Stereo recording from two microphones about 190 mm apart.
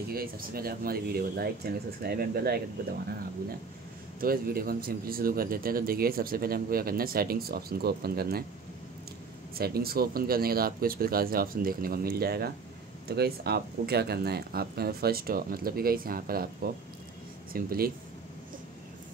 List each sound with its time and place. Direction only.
0.1 s speech: 50° right (ahead or behind)
4.2 s speech: 50° right (ahead or behind)
9.6 s speech: 55° right (ahead or behind)